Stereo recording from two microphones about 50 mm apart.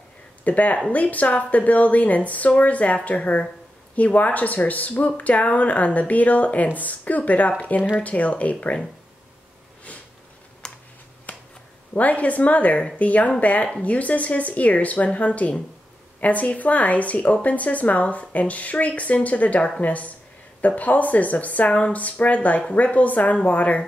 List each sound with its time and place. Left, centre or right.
0.4 s speech: left
9.9 s a sound: left
10.6 s computer keyboard: centre
11.9 s speech: left